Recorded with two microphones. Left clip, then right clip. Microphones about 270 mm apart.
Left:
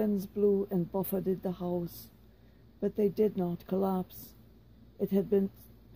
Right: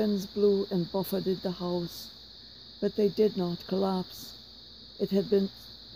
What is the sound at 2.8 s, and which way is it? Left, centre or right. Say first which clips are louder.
Speech: right 3 dB; right.